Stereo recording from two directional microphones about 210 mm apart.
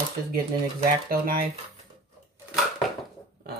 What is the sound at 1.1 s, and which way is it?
Speech, 45° right (ahead or behind).